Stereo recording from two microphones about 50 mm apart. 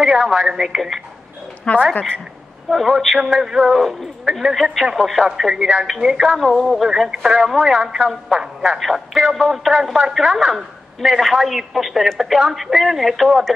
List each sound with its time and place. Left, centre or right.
0.0 s speech: centre
1.7 s a woman's voice: left
3.0 s a woman's voice: centre
3.3 s speech: centre
6.3 s a woman's voice: centre
6.9 s a woman's voice: centre